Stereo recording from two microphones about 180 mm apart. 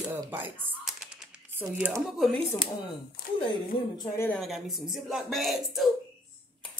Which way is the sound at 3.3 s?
50° left (ahead or behind).